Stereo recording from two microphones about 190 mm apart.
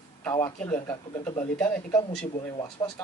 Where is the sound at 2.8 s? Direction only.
20° left (ahead or behind).